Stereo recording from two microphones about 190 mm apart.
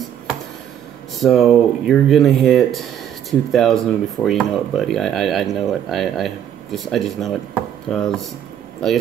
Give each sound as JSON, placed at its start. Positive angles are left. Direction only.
{"t": 1.2, "sound": "speech", "side_deg": 0}